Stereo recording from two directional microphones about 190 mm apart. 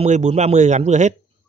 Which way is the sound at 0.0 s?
35° right (ahead or behind).